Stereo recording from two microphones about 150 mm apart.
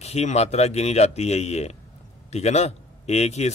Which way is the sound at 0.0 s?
45° left (ahead or behind).